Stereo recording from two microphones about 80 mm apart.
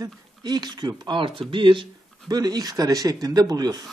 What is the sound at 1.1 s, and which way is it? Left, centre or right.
Speech, right.